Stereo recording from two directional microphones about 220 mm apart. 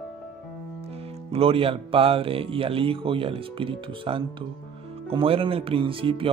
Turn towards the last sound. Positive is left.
turn(degrees=-25)  # may be behind; listen again after turning